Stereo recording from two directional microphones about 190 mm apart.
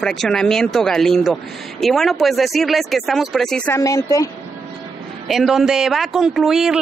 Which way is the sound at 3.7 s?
15° left (ahead or behind).